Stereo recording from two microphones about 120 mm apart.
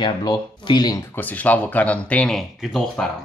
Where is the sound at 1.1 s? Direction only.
15° left (ahead or behind).